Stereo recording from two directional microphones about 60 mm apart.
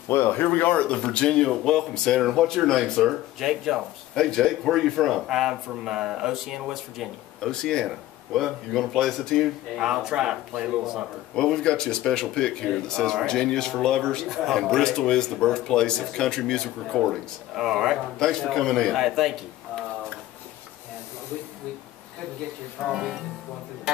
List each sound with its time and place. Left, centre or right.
0.1 s speech: left; by 1.4 s centre
1.4 s speech: centre
4.1 s speech: centre
5.1 s speech: centre
7.4 s speech: centre
9.8 s speech: centre
11.3 s speech: centre
14.3 s speech: centre
17.6 s speech: centre
18.2 s speech: centre
22.8 s speech: centre